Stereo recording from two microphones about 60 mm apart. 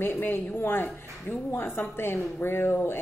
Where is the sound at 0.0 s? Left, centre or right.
Left.